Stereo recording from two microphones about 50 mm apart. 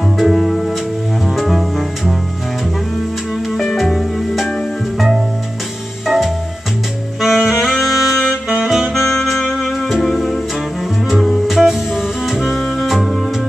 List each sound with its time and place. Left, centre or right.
0.2 s music: centre
3.4 s music: centre
7.2 s saxophone: centre
8.9 s music: centre